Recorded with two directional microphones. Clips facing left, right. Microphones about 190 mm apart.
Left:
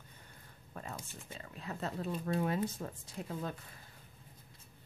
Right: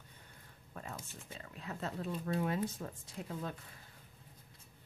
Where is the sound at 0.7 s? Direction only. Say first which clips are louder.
Left 1 dB; 35° left (ahead or behind).